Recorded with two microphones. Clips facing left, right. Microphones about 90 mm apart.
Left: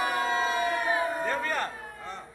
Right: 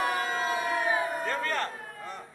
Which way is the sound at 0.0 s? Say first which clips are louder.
Left 2 dB; centre (ahead or behind).